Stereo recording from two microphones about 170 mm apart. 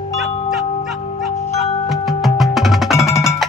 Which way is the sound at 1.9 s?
Centre (ahead or behind).